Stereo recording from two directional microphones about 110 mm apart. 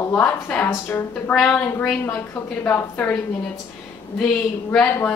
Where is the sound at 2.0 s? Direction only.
20° left (ahead or behind).